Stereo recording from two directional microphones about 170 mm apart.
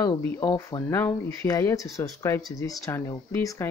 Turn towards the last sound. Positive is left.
turn(degrees=15)  # may be behind; listen again after turning